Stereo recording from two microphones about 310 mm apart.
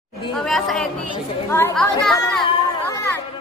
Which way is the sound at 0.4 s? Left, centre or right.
Centre.